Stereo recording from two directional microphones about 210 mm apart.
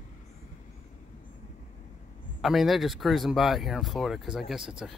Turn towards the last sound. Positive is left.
turn(degrees=0)  # may be behind; listen again after turning